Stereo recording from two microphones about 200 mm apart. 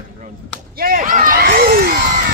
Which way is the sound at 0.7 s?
45° right (ahead or behind).